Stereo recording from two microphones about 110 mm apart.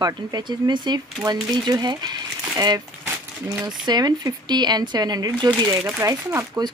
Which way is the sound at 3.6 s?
40° right (ahead or behind).